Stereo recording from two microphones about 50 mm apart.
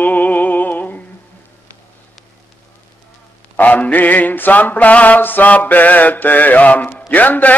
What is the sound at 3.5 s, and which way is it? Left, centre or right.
Mantra, left.